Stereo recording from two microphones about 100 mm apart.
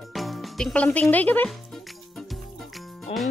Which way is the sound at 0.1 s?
Centre (ahead or behind).